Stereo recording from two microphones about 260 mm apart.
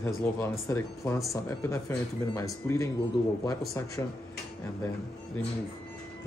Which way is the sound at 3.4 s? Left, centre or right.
Centre.